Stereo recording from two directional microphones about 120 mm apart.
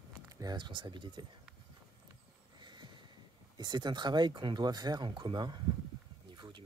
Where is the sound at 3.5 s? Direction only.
35° right (ahead or behind).